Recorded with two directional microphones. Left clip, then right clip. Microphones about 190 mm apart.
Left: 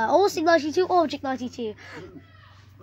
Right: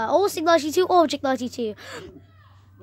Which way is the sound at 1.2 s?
60° right (ahead or behind).